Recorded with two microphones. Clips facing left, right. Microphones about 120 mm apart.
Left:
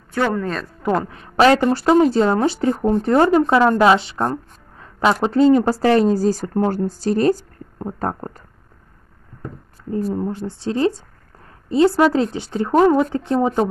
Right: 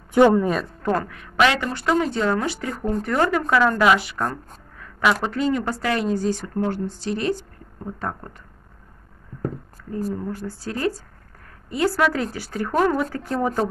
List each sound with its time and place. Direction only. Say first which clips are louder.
0.1 s speech: right 5 dB; 15° right (ahead or behind)
0.9 s speech: left 5 dB; 30° left (ahead or behind)
10.1 s speech: left 5 dB; 25° left (ahead or behind)